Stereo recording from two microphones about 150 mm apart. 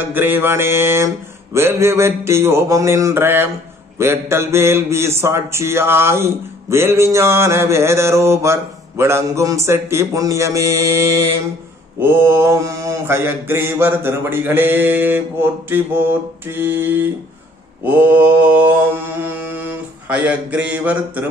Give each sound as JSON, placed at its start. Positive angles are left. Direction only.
{"t": 0.0, "sound": "speech", "side_deg": -15}